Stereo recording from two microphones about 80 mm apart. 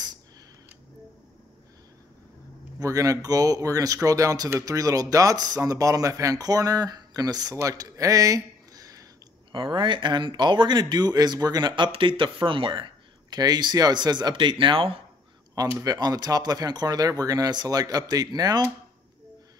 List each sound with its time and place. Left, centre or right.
2.8 s speech: right
9.5 s speech: right
11.7 s speech: right
13.4 s speech: right
15.8 s speech: right